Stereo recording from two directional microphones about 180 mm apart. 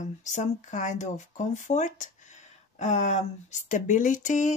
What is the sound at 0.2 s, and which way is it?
Speech, 40° left (ahead or behind).